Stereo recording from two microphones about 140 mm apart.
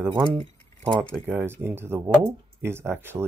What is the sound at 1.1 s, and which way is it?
Speech, 15° right (ahead or behind).